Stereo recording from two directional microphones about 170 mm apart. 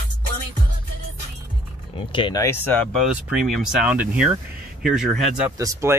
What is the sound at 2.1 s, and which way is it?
Speech, 25° left (ahead or behind).